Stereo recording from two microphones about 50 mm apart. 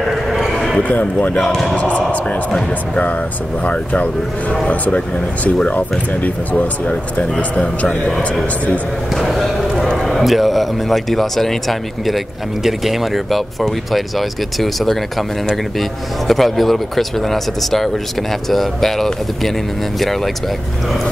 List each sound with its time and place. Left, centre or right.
0.0 s a sound: centre
0.8 s speech: left
1.3 s speech: centre
1.8 s speech: left
3.6 s a man's voice: left
9.1 s a sound: centre
10.0 s speech: centre